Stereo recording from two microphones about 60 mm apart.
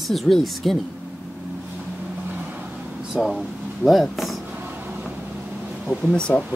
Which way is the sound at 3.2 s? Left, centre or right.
Centre.